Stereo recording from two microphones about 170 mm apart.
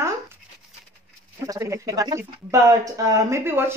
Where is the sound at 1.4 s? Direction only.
20° right (ahead or behind).